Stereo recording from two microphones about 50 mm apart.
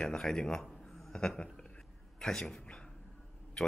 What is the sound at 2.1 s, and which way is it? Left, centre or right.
Speech, centre.